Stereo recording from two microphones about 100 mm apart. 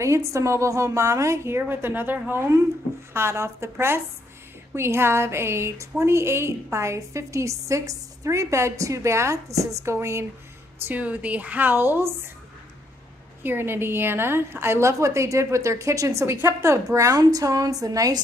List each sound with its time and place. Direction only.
0.0 s a woman's voice: 30° right (ahead or behind)
10.8 s a woman's voice: 15° right (ahead or behind)
13.4 s a woman's voice: 20° right (ahead or behind); by 18.2 s 35° right (ahead or behind)